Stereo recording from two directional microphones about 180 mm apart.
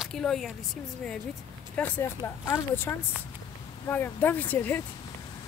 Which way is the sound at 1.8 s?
5° left (ahead or behind).